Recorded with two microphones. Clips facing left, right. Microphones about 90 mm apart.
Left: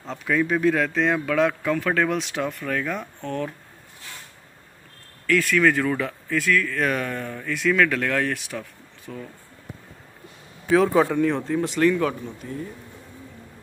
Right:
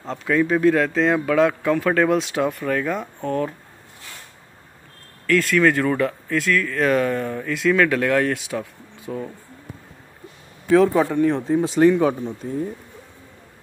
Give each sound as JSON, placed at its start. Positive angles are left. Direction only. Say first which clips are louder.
{"t": 0.0, "sound": "speech", "louder": "right 3 dB", "side_deg": 0}
{"t": 5.2, "sound": "speech", "louder": "right 2 dB", "side_deg": 0}
{"t": 10.7, "sound": "speech", "louder": "right 2 dB", "side_deg": 0}
{"t": 11.4, "sound": "speech", "louder": "right 5 dB", "side_deg": -20}
{"t": 12.4, "sound": "speech", "louder": "right 6 dB", "side_deg": -40}